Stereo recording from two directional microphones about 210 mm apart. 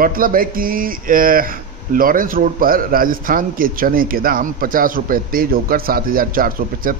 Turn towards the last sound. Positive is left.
turn(degrees=-40)  # may be behind; listen again after turning